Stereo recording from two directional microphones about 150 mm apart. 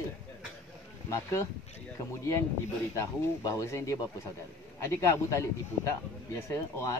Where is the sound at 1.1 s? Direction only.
20° left (ahead or behind).